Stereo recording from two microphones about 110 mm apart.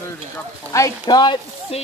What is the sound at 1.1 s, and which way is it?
Speech, 40° left (ahead or behind).